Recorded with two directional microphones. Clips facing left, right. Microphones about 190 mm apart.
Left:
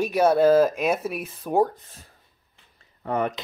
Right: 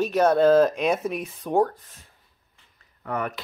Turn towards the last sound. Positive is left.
turn(degrees=25)  # may be behind; listen again after turning